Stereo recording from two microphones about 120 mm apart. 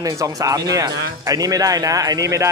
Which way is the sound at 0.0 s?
30° right (ahead or behind).